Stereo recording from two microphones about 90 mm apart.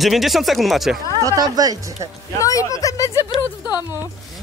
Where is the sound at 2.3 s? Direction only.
40° left (ahead or behind).